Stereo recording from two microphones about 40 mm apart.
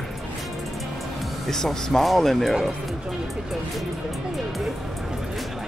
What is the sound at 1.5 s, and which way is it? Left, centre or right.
Speech, centre.